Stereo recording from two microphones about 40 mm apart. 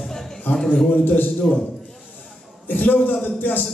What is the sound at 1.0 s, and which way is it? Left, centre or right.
Speech, left.